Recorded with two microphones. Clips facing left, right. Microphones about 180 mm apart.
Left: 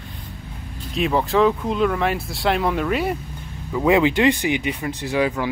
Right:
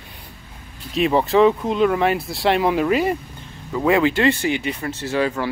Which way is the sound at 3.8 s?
15° left (ahead or behind).